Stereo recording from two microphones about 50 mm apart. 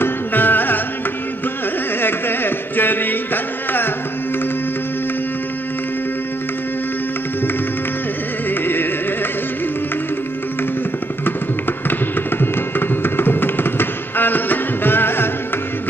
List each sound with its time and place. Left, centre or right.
0.0 s music: left
2.0 s a sound: left
8.5 s music: left
11.9 s music: left